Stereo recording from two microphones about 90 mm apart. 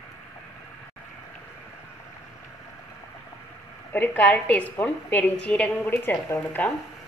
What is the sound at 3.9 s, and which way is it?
A woman's voice, 20° left (ahead or behind).